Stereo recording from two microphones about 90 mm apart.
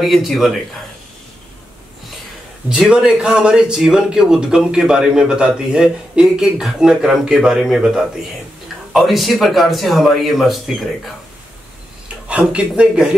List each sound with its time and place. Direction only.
0.0 s speech: centre (ahead or behind)
2.7 s speech: 5° right (ahead or behind)
12.3 s speech: 15° right (ahead or behind)